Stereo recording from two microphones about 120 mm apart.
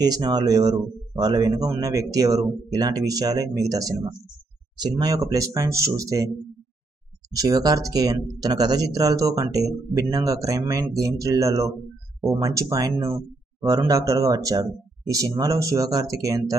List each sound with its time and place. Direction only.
0.0 s speech: 35° right (ahead or behind)
7.3 s speech: 30° right (ahead or behind)